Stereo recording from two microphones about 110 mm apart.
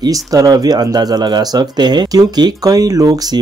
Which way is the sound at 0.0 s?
35° right (ahead or behind).